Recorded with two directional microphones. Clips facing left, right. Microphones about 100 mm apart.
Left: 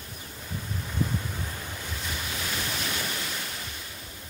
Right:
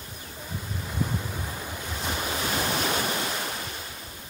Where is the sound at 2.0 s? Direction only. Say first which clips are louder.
Right 7 dB; 40° right (ahead or behind).